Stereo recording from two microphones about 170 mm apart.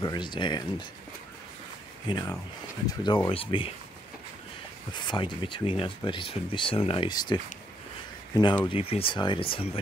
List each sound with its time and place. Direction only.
0.0 s speech: 25° left (ahead or behind)
2.0 s speech: 25° left (ahead or behind)
4.9 s speech: 30° left (ahead or behind)
8.6 s speech: 35° left (ahead or behind)